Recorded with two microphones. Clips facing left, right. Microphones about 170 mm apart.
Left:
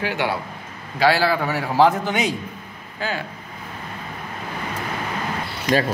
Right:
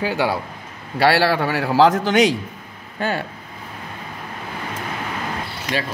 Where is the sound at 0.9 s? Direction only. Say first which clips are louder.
Right 2 dB; 65° right (ahead or behind); by 2.3 s 90° right.